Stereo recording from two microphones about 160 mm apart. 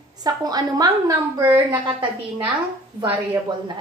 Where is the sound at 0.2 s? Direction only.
25° right (ahead or behind).